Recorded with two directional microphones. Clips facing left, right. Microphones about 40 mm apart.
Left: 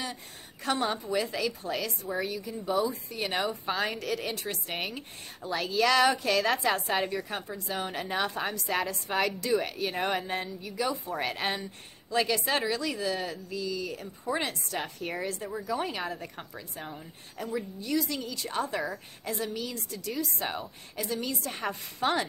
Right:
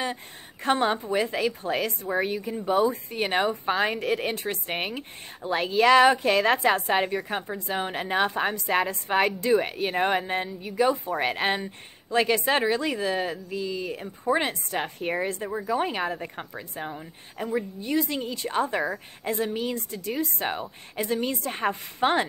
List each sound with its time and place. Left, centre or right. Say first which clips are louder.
0.0 s a woman's voice: right 7 dB; right